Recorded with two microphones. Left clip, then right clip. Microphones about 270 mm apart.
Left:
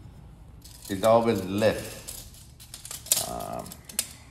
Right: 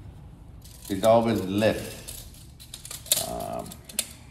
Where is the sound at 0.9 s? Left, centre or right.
Left.